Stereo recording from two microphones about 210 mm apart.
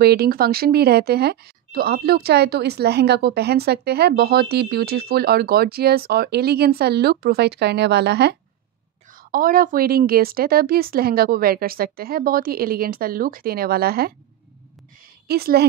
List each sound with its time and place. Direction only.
0.0 s speech: 45° right (ahead or behind)
15.2 s speech: 50° right (ahead or behind)